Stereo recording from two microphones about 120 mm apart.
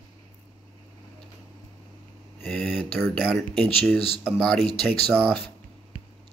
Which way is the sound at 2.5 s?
Centre (ahead or behind).